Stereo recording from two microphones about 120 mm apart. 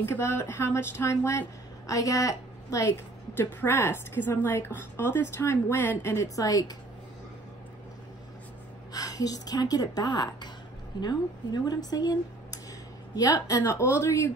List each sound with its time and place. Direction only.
0.0 s speech: 20° left (ahead or behind)
8.9 s speech: 30° left (ahead or behind)